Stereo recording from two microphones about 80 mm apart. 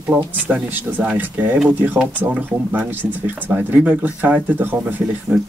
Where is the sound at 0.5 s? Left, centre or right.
Centre.